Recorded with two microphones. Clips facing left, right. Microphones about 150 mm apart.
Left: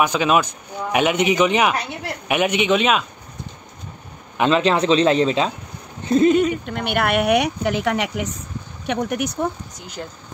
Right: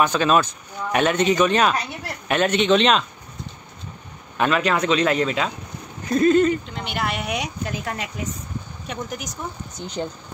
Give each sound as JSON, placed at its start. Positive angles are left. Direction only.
{"t": 0.0, "sound": "speech", "side_deg": 10}
{"t": 4.4, "sound": "speech", "side_deg": 25}
{"t": 6.3, "sound": "speech", "side_deg": 10}
{"t": 6.6, "sound": "speech", "side_deg": 60}
{"t": 10.0, "sound": "speech", "side_deg": -15}